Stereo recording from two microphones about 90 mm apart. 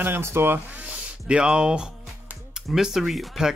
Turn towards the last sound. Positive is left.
turn(degrees=-5)  # may be behind; listen again after turning